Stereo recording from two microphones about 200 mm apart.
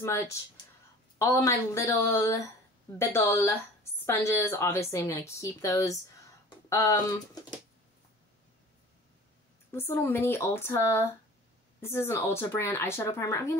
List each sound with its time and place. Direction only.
0.0 s speech: 15° left (ahead or behind)
9.7 s speech: 10° left (ahead or behind)